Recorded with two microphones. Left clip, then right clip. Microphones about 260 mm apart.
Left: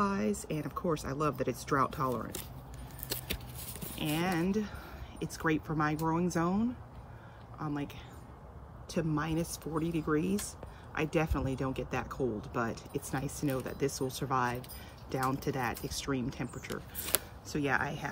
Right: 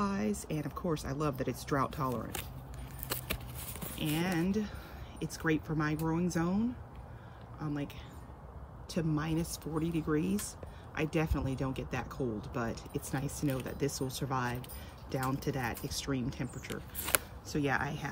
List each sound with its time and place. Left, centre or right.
0.0 s speech: centre
4.2 s speech: centre